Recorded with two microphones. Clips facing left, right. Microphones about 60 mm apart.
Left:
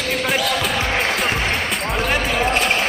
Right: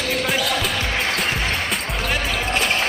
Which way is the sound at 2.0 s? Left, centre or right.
Centre.